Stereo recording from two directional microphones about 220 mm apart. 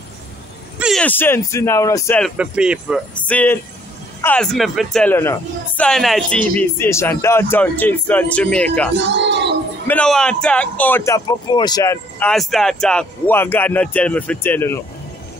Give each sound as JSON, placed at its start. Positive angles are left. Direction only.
{"t": 0.7, "sound": "speech", "side_deg": 0}
{"t": 2.2, "sound": "speech", "side_deg": -5}
{"t": 8.9, "sound": "speech", "side_deg": -50}
{"t": 9.8, "sound": "speech", "side_deg": 5}